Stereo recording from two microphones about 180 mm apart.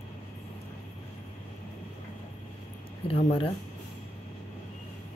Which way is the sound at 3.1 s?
30° left (ahead or behind).